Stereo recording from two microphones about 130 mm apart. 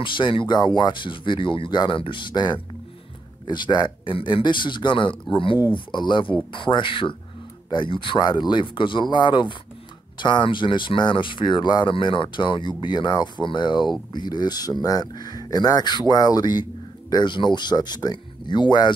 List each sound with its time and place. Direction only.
0.0 s speech: 40° left (ahead or behind)